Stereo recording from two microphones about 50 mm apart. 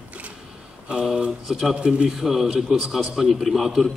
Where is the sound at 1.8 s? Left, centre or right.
Centre.